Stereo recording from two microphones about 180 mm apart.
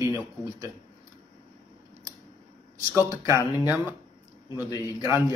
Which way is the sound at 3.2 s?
15° right (ahead or behind).